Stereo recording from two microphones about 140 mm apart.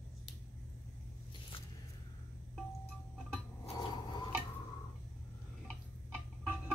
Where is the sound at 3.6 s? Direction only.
45° left (ahead or behind).